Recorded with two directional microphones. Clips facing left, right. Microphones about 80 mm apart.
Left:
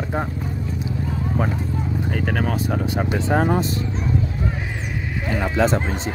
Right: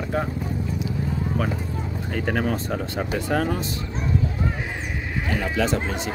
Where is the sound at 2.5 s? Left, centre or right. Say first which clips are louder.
Left 3 dB; centre; by 3.8 s left.